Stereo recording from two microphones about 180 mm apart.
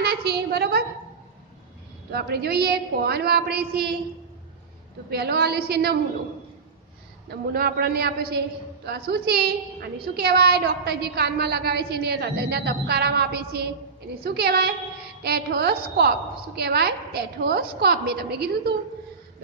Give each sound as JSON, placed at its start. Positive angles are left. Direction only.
{"t": 0.0, "sound": "a sound", "side_deg": -60}
{"t": 2.0, "sound": "a woman's voice", "side_deg": -65}
{"t": 5.1, "sound": "a woman's voice", "side_deg": -60}
{"t": 7.2, "sound": "a woman's voice", "side_deg": -60}